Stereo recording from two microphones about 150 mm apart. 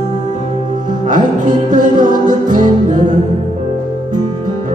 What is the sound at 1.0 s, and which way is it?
Music, 60° right (ahead or behind).